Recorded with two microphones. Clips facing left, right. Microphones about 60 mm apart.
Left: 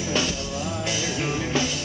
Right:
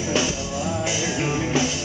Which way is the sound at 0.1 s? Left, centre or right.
Centre.